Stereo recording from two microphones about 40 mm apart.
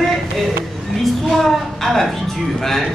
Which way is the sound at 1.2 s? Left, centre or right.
Centre.